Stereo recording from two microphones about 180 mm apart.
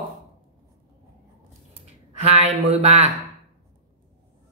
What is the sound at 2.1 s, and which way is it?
Speech, 35° right (ahead or behind).